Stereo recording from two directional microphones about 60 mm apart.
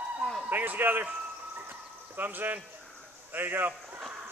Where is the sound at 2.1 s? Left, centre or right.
Right.